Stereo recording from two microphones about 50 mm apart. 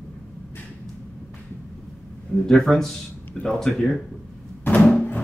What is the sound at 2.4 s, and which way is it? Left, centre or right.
A man's voice, centre.